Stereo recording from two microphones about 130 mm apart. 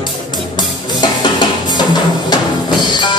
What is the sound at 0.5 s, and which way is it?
Music, 35° left (ahead or behind).